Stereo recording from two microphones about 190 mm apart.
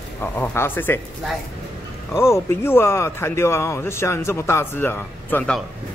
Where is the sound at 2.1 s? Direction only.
15° left (ahead or behind).